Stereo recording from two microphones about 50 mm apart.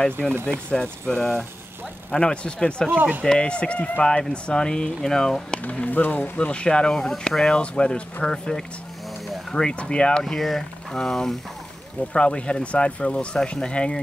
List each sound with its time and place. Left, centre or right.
0.5 s speech: left
2.9 s speech: right
3.3 s speech: left
5.6 s speech: left
6.3 s speech: left
10.2 s speech: centre